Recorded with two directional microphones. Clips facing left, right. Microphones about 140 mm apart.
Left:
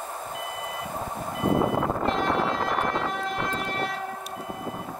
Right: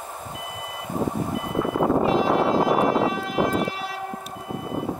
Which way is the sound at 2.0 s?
5° right (ahead or behind).